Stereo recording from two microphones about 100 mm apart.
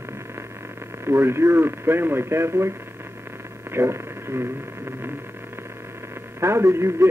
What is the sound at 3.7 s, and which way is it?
Radio, 25° right (ahead or behind).